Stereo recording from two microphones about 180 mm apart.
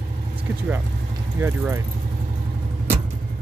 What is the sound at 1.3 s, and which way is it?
Speech, 15° right (ahead or behind).